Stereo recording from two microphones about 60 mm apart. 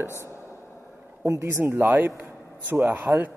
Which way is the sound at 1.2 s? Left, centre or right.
Right.